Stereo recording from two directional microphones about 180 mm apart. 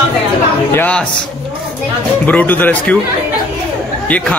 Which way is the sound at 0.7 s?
10° left (ahead or behind).